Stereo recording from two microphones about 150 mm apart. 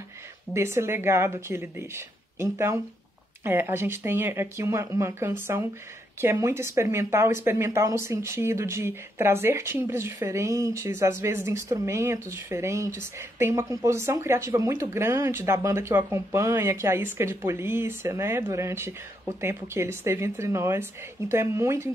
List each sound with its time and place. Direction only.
0.5 s speech: 15° right (ahead or behind)